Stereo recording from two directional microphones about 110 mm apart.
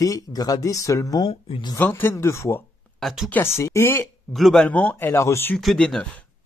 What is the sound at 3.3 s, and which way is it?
Speech, 20° left (ahead or behind).